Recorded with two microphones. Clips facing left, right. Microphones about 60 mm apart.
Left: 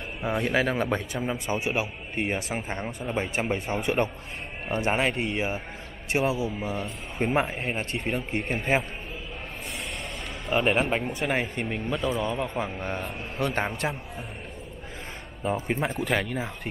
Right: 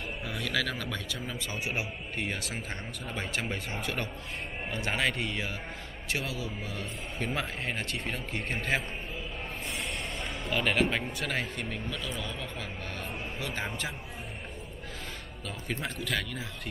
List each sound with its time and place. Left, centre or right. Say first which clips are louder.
0.2 s a man's voice: left 9 dB; left
10.5 s a man's voice: left 4 dB; left
13.4 s a man's voice: left 10 dB; left
15.4 s a man's voice: left 9 dB; left